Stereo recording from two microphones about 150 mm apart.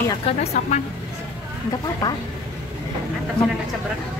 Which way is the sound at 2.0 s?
25° left (ahead or behind).